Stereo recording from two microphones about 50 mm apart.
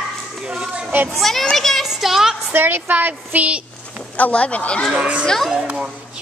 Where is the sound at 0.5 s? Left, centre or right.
Centre.